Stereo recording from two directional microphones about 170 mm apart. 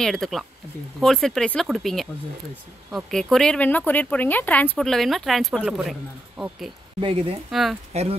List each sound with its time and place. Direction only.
0.0 s speech: centre (ahead or behind)
3.1 s speech: 5° left (ahead or behind)
7.0 s speech: 35° right (ahead or behind)